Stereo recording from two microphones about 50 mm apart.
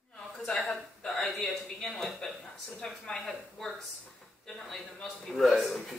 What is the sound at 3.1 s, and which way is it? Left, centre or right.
A man's voice, centre.